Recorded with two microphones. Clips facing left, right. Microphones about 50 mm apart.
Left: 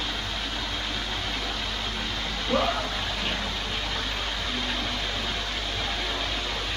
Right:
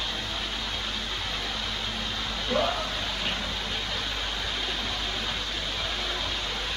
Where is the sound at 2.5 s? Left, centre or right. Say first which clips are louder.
Left 1 dB; left.